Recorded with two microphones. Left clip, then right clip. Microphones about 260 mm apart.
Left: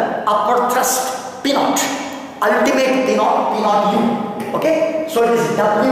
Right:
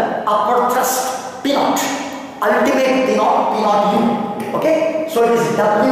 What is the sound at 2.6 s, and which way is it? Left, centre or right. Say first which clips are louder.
A man's voice: even; centre.